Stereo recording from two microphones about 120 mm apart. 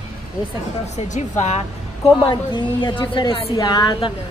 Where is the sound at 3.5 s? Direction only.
35° left (ahead or behind).